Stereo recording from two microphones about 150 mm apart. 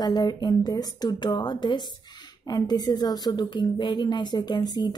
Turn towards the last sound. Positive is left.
turn(degrees=25)  # may be behind; listen again after turning